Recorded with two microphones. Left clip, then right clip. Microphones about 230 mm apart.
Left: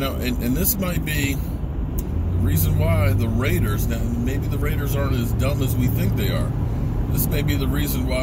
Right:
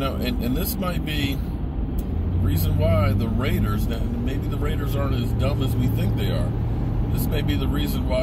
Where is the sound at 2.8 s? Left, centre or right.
Centre.